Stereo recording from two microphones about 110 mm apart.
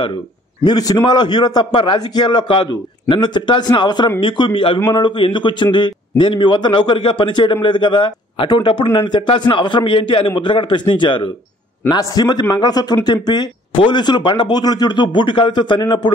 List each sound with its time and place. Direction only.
0.7 s a man's voice: 40° left (ahead or behind)
11.9 s speech: 35° left (ahead or behind)